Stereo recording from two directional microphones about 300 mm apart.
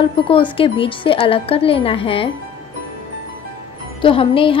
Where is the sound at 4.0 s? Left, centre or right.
Centre.